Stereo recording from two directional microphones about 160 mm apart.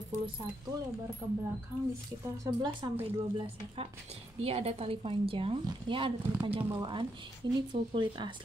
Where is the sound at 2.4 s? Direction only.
25° right (ahead or behind).